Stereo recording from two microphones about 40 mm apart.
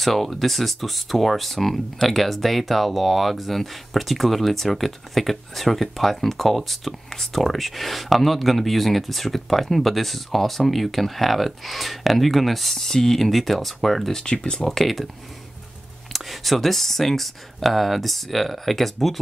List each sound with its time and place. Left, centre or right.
0.0 s speech: centre
14.2 s speech: left
14.7 s speech: centre
16.1 s speech: centre